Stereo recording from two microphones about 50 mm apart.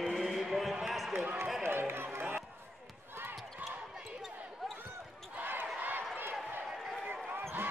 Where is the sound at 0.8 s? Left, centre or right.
Centre.